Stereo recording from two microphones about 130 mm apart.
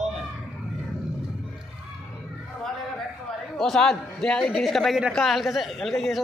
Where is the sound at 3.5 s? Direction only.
5° left (ahead or behind).